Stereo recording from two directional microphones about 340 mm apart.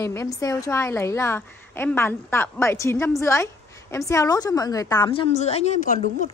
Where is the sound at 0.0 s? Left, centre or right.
Centre.